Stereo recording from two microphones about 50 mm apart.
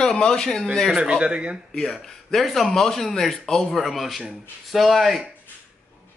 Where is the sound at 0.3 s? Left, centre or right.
Centre.